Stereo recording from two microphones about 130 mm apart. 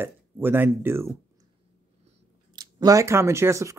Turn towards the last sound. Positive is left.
turn(degrees=-20)  # may be behind; listen again after turning